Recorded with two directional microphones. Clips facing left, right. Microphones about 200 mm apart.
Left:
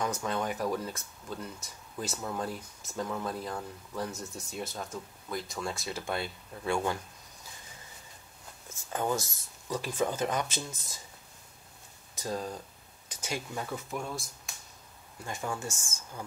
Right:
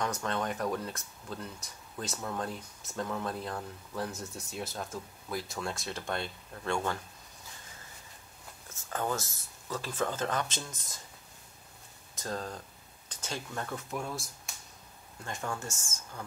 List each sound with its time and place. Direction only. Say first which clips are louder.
0.0 s speech: left 1 dB; 5° left (ahead or behind)
8.9 s speech: left 2 dB; 15° left (ahead or behind)
12.2 s speech: left 2 dB; 10° left (ahead or behind)